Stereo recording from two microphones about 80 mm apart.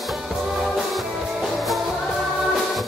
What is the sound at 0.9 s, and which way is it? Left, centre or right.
Music, centre.